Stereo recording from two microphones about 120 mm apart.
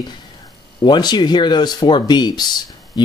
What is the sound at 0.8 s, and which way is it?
Speech, 40° left (ahead or behind).